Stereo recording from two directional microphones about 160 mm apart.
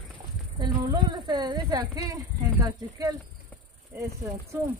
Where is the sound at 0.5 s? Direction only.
30° right (ahead or behind).